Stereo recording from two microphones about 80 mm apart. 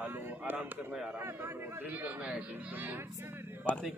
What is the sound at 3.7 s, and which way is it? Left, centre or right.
Speech, centre.